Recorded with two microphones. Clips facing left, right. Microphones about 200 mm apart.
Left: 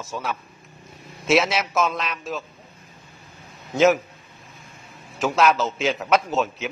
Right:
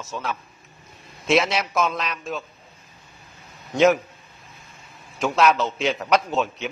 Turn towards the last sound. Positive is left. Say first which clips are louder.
# even
turn(degrees=0)  # may be behind; listen again after turning